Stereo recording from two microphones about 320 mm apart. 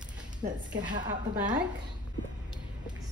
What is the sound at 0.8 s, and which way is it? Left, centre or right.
Speech, right.